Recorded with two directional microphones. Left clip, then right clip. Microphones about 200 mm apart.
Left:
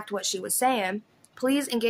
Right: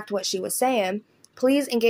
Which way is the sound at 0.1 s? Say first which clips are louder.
Right 4 dB; 5° right (ahead or behind).